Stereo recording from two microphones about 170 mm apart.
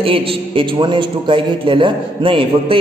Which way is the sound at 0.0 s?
30° right (ahead or behind).